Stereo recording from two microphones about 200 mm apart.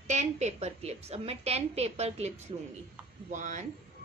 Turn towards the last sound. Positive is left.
turn(degrees=-40)  # may be behind; listen again after turning